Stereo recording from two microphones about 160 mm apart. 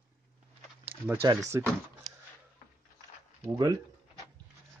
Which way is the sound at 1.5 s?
20° right (ahead or behind).